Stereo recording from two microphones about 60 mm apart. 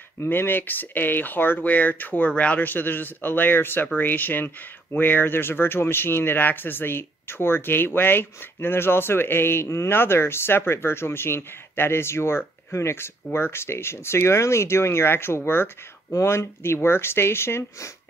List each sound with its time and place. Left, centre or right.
0.2 s speech: left
16.1 s speech: left